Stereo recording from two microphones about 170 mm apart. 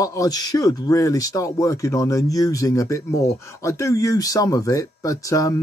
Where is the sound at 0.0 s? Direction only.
20° left (ahead or behind).